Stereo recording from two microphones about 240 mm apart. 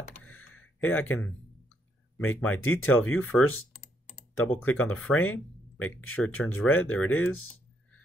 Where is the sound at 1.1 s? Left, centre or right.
Centre.